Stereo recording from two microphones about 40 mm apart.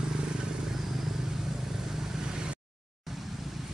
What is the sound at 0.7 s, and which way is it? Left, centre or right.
Vehicle, centre.